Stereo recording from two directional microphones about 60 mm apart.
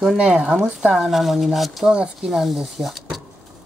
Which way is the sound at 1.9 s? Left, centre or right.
Centre.